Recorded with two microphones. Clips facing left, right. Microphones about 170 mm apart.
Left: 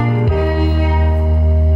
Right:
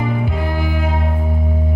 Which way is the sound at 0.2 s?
50° left (ahead or behind).